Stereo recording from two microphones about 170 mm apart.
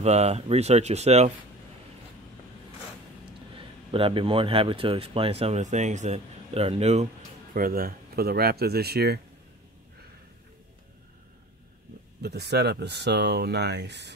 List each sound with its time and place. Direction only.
0.0 s speech: 40° right (ahead or behind)
3.5 s speech: 35° right (ahead or behind)
7.5 s speech: 60° right (ahead or behind)
12.2 s speech: 75° right (ahead or behind); by 14.1 s 90° right